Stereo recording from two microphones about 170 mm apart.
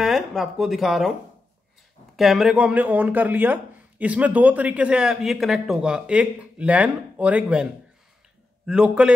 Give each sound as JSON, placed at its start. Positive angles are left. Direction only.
{"t": 0.0, "sound": "speech", "side_deg": 0}
{"t": 2.1, "sound": "speech", "side_deg": 0}
{"t": 8.6, "sound": "speech", "side_deg": -5}